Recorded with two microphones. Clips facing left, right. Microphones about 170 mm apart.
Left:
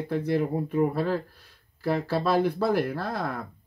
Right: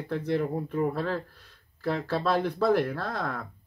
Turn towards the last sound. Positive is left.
turn(degrees=5)  # may be behind; listen again after turning